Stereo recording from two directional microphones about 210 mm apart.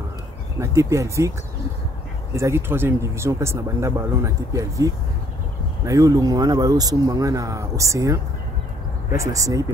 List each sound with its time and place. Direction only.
0.6 s speech: 15° right (ahead or behind)
2.3 s speech: 15° right (ahead or behind)